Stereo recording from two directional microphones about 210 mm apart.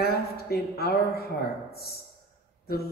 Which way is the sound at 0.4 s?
45° left (ahead or behind).